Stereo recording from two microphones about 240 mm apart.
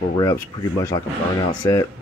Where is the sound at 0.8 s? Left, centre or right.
Centre.